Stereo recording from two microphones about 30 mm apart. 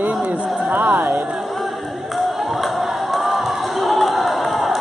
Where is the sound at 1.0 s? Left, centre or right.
Centre.